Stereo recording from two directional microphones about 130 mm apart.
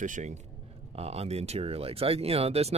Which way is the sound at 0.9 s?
50° right (ahead or behind).